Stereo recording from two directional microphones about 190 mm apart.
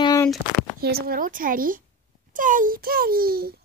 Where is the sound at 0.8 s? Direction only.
55° right (ahead or behind).